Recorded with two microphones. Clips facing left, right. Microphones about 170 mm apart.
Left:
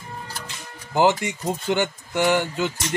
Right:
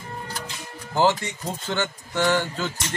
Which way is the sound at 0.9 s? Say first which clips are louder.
Left 2 dB; 15° left (ahead or behind).